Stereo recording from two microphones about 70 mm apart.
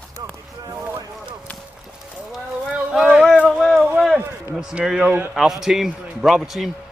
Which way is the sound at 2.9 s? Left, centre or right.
Centre.